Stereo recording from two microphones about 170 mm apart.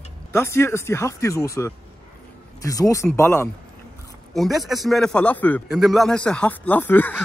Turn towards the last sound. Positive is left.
turn(degrees=10)  # may be behind; listen again after turning